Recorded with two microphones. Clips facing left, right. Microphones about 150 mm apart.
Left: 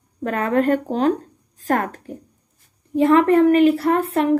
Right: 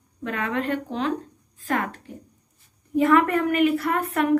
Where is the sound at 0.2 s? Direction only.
45° left (ahead or behind).